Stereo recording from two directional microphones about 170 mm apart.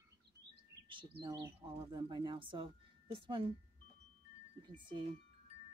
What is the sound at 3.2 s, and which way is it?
Speech, 30° right (ahead or behind).